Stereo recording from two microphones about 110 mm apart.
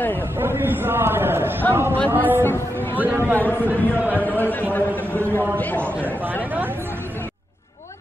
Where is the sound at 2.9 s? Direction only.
20° right (ahead or behind).